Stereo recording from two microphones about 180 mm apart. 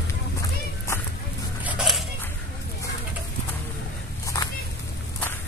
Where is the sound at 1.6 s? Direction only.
5° right (ahead or behind).